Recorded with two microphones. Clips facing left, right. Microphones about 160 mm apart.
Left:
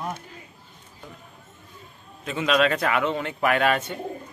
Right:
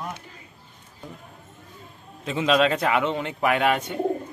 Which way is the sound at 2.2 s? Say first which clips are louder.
Right 1 dB; 25° right (ahead or behind).